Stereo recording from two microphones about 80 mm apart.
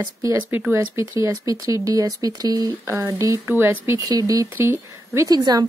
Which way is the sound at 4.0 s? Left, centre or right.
Right.